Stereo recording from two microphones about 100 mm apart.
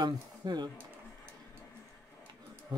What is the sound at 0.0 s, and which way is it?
Speech, 45° right (ahead or behind).